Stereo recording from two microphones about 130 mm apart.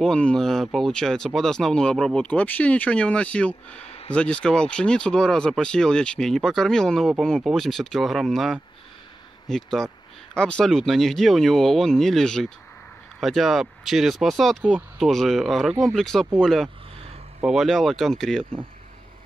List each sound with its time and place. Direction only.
0.0 s speech: 5° left (ahead or behind)
3.8 s a sound: 50° left (ahead or behind)
4.1 s speech: 10° left (ahead or behind)